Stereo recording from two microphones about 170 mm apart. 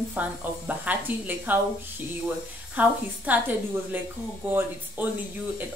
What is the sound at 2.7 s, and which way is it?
Speech, 10° right (ahead or behind).